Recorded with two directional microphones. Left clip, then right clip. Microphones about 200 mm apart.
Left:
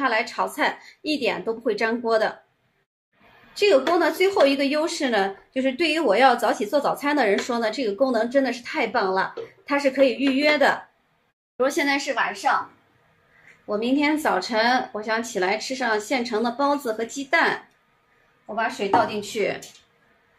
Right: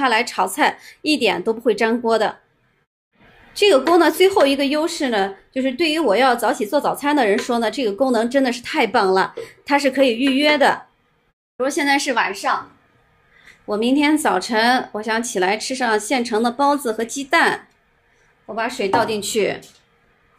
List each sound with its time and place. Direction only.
0.0 s a woman's voice: 40° right (ahead or behind)
3.5 s a woman's voice: 35° right (ahead or behind)
11.5 s speech: centre (ahead or behind)
12.1 s a woman's voice: 50° right (ahead or behind)
13.7 s a woman's voice: 35° right (ahead or behind)
18.5 s a woman's voice: 60° right (ahead or behind)